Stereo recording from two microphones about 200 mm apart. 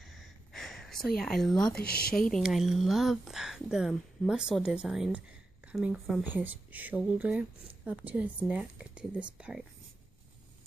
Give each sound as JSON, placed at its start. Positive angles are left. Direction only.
{"t": 0.0, "sound": "a sound", "side_deg": 0}
{"t": 1.8, "sound": "speech", "side_deg": 50}
{"t": 2.1, "sound": "speech", "side_deg": 0}